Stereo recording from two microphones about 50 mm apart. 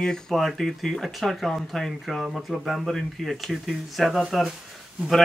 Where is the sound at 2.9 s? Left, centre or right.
Centre.